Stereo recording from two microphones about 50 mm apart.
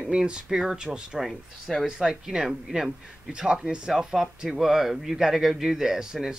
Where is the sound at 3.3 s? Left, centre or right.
Centre.